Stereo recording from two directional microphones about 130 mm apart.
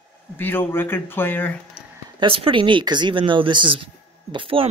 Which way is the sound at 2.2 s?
40° right (ahead or behind).